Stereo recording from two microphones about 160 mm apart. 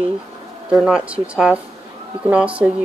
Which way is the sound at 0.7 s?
5° right (ahead or behind).